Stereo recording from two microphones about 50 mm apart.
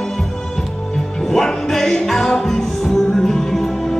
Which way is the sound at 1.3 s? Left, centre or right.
Centre.